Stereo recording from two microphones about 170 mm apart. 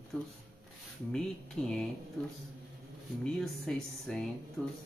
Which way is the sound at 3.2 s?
5° left (ahead or behind).